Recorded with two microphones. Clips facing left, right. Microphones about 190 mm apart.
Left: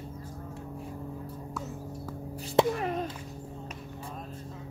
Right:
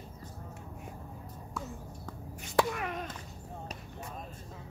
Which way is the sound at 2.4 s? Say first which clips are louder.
Left 5 dB; 30° left (ahead or behind).